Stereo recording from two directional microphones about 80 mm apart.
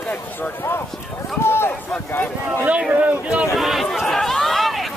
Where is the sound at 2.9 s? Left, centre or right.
Centre.